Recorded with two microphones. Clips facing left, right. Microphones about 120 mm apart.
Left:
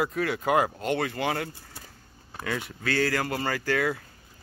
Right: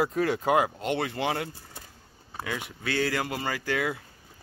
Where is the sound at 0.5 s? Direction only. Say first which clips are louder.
Even; 15° right (ahead or behind).